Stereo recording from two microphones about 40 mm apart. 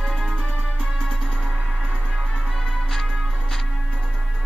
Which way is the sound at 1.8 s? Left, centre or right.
Right.